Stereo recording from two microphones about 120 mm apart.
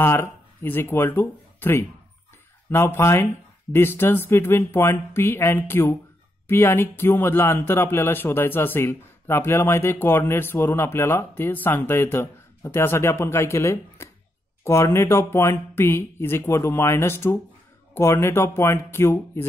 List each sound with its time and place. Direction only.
0.0 s speech: 20° left (ahead or behind)